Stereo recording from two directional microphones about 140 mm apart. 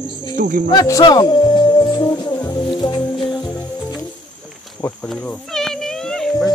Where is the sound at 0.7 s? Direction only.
25° left (ahead or behind).